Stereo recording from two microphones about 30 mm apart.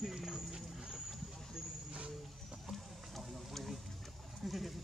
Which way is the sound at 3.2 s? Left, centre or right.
Centre.